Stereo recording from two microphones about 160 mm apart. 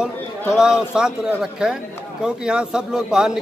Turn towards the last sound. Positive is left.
turn(degrees=-5)  # may be behind; listen again after turning